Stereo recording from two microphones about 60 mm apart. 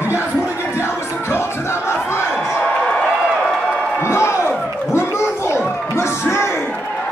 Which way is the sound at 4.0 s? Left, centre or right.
Left.